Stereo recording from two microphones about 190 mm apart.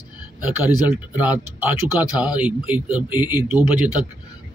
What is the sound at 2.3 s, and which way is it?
Speech, 10° right (ahead or behind).